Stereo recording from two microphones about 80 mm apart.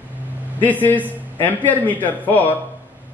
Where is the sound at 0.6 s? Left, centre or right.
Left.